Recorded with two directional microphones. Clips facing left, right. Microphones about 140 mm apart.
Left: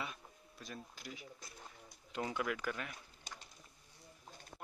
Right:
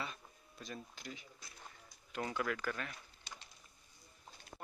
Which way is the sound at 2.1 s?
15° left (ahead or behind).